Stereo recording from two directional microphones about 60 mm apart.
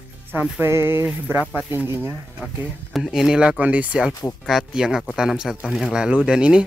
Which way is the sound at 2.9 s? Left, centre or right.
Centre.